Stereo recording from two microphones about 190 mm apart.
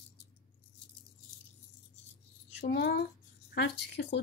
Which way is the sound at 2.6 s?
65° left (ahead or behind).